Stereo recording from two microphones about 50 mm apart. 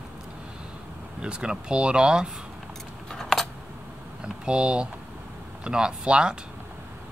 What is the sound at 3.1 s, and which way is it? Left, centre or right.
Typing, centre.